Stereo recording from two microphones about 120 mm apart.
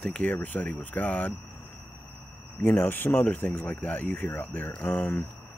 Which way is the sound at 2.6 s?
15° left (ahead or behind).